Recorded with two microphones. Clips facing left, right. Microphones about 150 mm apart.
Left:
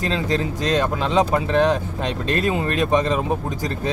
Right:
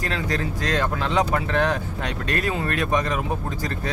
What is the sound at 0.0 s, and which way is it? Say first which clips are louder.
Speech: left 4 dB; 20° left (ahead or behind).